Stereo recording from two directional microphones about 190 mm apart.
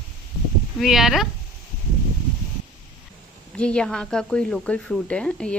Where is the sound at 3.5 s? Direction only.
5° left (ahead or behind).